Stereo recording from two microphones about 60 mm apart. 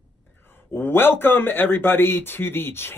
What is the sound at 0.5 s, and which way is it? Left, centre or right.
Speech, left.